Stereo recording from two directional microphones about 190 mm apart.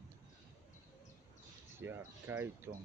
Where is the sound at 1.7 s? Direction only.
10° right (ahead or behind).